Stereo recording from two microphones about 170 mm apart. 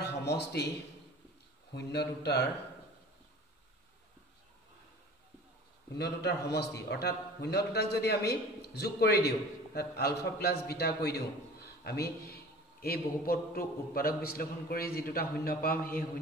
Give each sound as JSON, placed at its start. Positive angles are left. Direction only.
{"t": 0.0, "sound": "a sound", "side_deg": 75}
{"t": 1.7, "sound": "a man's voice", "side_deg": 75}
{"t": 5.9, "sound": "a man's voice", "side_deg": 70}